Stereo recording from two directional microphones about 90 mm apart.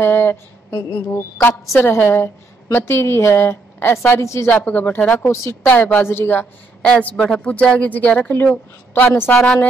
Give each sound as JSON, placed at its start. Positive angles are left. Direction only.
{"t": 0.0, "sound": "a sound", "side_deg": 25}
{"t": 0.9, "sound": "a woman's voice", "side_deg": 20}
{"t": 4.5, "sound": "a woman's voice", "side_deg": 15}
{"t": 5.2, "sound": "a woman's voice", "side_deg": 30}
{"t": 5.7, "sound": "a woman's voice", "side_deg": 20}
{"t": 6.8, "sound": "a woman's voice", "side_deg": 15}
{"t": 9.3, "sound": "speech", "side_deg": 10}